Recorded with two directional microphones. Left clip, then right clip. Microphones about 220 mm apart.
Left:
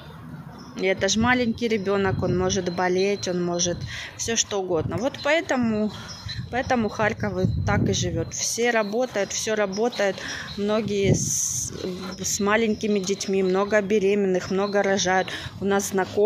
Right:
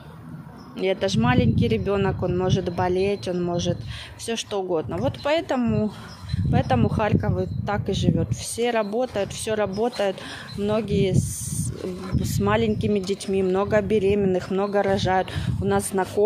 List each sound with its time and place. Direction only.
0.7 s speech: 5° right (ahead or behind)
11.1 s speech: 20° right (ahead or behind)
12.2 s speech: 5° right (ahead or behind)